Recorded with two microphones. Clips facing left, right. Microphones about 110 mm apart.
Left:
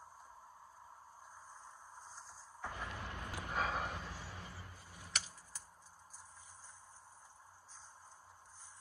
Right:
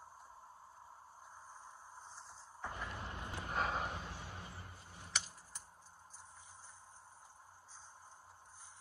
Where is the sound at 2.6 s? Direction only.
15° right (ahead or behind).